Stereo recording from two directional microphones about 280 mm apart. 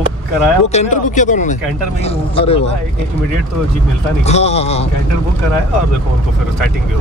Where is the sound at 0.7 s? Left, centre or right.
Left.